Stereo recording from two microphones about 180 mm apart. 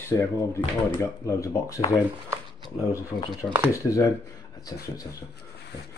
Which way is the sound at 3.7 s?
15° left (ahead or behind).